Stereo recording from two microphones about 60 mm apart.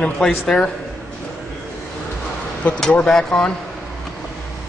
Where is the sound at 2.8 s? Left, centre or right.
Centre.